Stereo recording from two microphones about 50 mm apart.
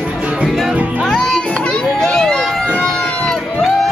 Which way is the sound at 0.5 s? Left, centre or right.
Centre.